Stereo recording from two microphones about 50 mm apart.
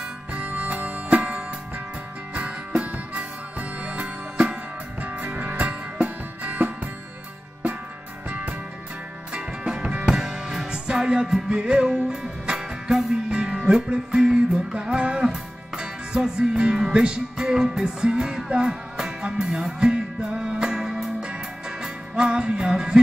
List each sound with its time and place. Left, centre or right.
0.3 s music: right
8.3 s music: right